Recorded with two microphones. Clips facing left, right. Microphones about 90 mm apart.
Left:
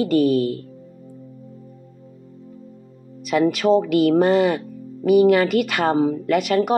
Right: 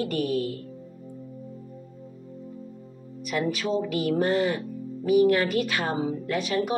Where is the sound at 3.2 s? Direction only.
85° left.